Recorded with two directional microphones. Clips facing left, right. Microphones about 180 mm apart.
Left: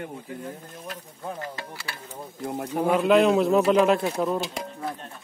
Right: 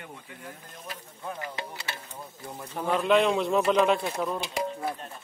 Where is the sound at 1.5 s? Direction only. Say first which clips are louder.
Right 1 dB; 20° right (ahead or behind).